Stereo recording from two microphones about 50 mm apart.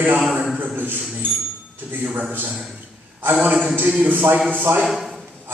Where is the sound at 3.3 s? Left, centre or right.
Right.